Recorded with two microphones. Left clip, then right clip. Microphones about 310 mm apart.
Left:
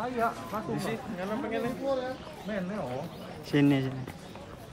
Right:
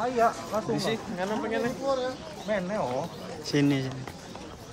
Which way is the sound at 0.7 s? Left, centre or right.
Right.